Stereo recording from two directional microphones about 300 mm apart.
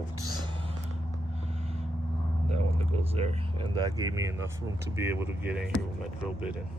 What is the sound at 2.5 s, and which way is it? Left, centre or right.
Speech, right.